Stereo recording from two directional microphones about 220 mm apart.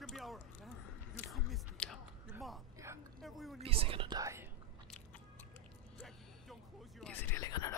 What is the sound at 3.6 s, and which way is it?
Whispering, 25° right (ahead or behind).